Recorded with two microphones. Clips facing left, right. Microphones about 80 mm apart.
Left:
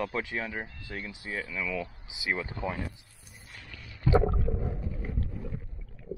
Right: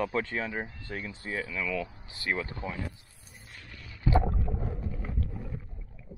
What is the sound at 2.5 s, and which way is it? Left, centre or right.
Speech, left.